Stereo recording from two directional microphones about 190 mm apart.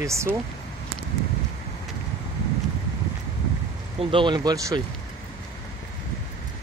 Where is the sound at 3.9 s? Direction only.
25° right (ahead or behind).